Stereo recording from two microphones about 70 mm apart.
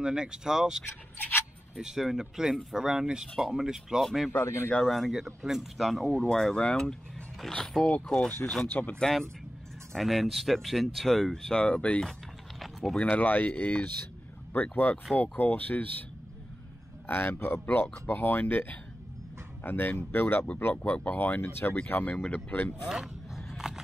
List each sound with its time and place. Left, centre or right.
0.0 s speech: centre
1.1 s a sound: left
1.8 s speech: centre
4.3 s speech: left
4.8 s speech: centre
6.2 s speech: centre
8.6 s speech: left
9.9 s speech: centre
12.1 s a sound: centre
13.0 s speech: left
22.8 s a sound: centre